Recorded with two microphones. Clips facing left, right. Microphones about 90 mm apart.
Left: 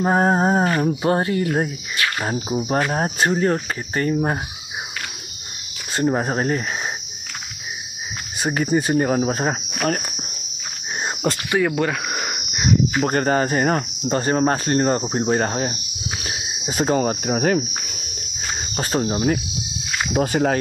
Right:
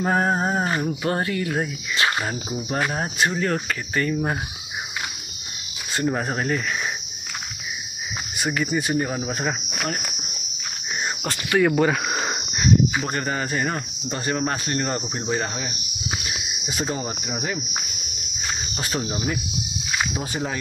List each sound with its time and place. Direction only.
0.2 s speech: 35° left (ahead or behind)
2.0 s cricket: 25° right (ahead or behind)
2.2 s speech: 30° left (ahead or behind)
5.9 s speech: 30° left (ahead or behind)
8.4 s speech: 35° left (ahead or behind)
11.6 s speech: centre (ahead or behind)
12.2 s a sound: 25° right (ahead or behind)
13.0 s speech: 45° left (ahead or behind)
18.8 s speech: 40° left (ahead or behind)
20.1 s speech: 75° left (ahead or behind)